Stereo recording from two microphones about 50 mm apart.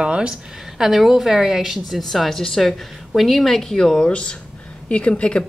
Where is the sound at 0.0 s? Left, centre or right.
Centre.